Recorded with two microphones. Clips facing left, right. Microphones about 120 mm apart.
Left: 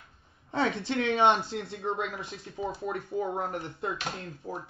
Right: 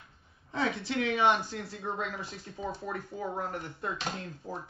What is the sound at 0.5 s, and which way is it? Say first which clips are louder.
Speech: left 3 dB; 35° left (ahead or behind).